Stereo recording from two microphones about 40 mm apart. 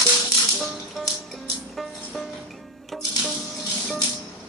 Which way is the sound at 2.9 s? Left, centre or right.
Centre.